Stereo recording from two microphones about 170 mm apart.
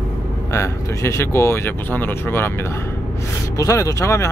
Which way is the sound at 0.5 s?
15° left (ahead or behind).